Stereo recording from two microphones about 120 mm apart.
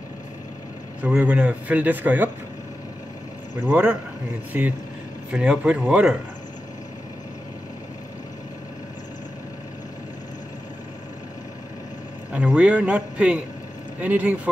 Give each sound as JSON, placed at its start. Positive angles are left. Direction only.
{"t": 1.0, "sound": "speech", "side_deg": -10}
{"t": 3.6, "sound": "speech", "side_deg": -15}
{"t": 12.3, "sound": "speech", "side_deg": -10}